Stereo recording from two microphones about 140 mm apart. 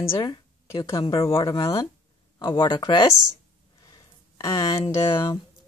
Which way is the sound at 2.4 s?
35° left (ahead or behind).